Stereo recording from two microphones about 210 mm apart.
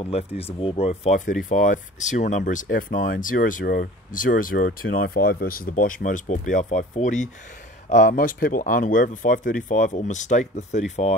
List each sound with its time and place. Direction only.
0.0 s speech: 30° left (ahead or behind)